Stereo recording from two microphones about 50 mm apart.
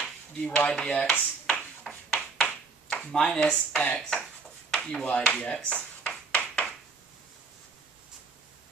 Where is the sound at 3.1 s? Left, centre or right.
Centre.